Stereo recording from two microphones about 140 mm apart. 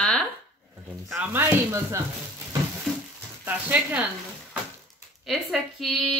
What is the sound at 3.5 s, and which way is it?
Speech, 10° right (ahead or behind).